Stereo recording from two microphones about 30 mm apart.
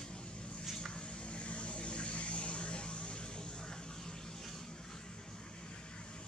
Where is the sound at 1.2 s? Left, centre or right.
Left.